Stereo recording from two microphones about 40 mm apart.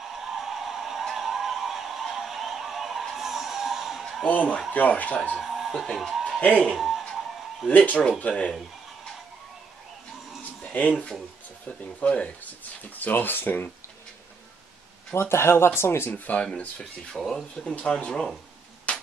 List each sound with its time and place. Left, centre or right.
0.0 s a sound: centre
4.3 s speech: left
5.4 s a sound: centre
5.9 s speech: centre
6.2 s music: left
6.7 s speech: centre
7.7 s speech: left
10.7 s speech: left
12.9 s speech: left
15.1 s speech: left
16.1 s speech: left
17.6 s speech: centre
18.9 s a sound: left